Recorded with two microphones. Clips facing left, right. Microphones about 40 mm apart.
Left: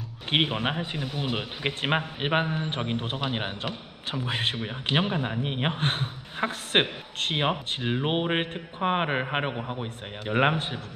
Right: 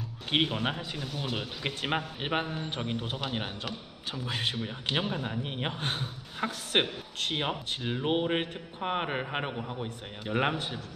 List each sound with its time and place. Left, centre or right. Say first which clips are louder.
0.3 s speech: left 3 dB; left